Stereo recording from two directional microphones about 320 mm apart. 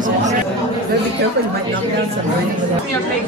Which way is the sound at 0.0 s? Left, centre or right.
Right.